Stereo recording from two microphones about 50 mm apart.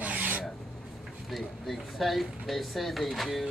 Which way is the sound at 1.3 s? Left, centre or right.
Centre.